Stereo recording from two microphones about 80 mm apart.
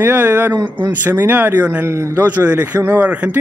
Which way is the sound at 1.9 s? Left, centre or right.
Right.